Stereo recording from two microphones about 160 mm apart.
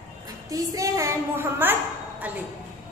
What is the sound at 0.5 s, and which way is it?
A woman's voice, 20° right (ahead or behind).